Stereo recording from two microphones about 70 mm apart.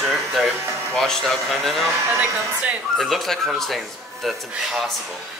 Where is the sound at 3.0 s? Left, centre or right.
Centre.